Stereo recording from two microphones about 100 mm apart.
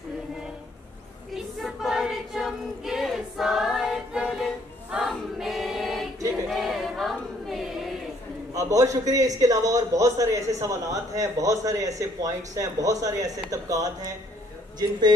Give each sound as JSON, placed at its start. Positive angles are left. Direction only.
{"t": 1.3, "sound": "choir", "side_deg": 0}
{"t": 8.5, "sound": "a man's voice", "side_deg": -35}